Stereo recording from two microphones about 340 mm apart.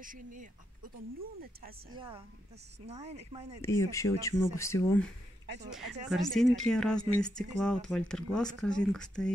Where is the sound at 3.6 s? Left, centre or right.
Centre.